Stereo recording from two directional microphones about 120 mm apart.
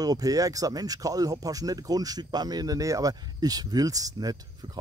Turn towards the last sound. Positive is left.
turn(degrees=-30)  # may be behind; listen again after turning